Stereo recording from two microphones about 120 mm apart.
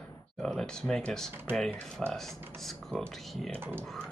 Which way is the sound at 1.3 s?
20° right (ahead or behind).